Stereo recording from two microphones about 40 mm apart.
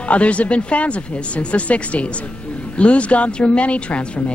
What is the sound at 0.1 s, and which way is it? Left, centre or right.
Speech, left.